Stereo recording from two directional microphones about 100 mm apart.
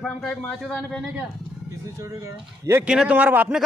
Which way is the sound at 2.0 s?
30° right (ahead or behind).